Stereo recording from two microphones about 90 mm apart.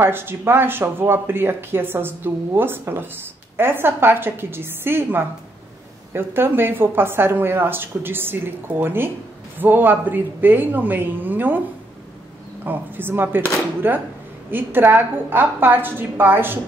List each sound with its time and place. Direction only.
0.0 s speech: 25° right (ahead or behind)
12.6 s speech: 20° right (ahead or behind)